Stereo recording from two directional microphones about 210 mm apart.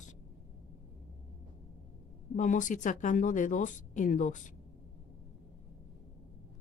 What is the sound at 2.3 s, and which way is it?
Speech, 35° left (ahead or behind).